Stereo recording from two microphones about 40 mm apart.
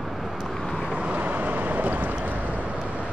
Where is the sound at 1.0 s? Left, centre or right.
Right.